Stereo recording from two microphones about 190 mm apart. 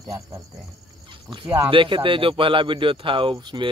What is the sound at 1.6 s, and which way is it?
A man's voice, 25° right (ahead or behind).